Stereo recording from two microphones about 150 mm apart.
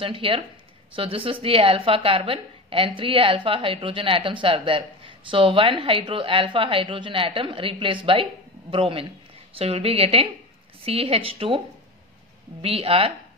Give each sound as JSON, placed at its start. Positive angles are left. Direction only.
{"t": 0.0, "sound": "a woman's voice", "side_deg": -35}
{"t": 12.6, "sound": "a woman's voice", "side_deg": -40}